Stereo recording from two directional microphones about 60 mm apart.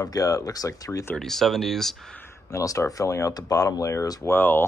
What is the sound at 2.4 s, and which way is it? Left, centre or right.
Speech, left.